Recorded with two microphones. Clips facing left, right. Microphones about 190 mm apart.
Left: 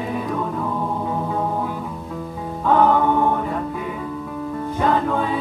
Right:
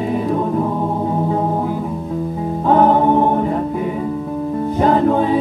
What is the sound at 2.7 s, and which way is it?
Music, 35° right (ahead or behind).